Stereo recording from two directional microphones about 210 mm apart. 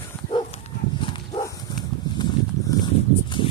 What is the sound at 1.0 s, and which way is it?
Dog, 20° left (ahead or behind).